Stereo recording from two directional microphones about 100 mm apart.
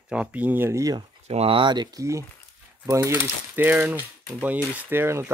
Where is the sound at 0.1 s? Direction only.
15° right (ahead or behind); by 0.9 s 30° right (ahead or behind).